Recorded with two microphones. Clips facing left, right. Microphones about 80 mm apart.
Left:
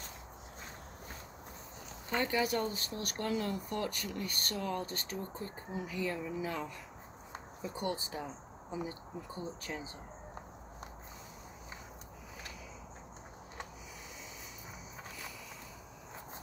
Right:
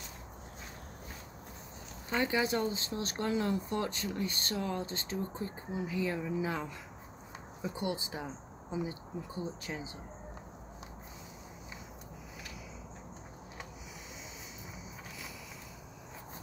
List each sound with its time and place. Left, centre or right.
2.0 s speech: right
7.7 s speech: centre